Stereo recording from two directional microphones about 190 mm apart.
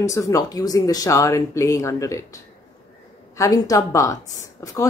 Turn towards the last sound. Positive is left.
turn(degrees=20)  # may be behind; listen again after turning